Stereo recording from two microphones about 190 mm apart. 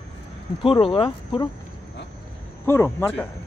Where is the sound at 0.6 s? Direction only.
30° left (ahead or behind).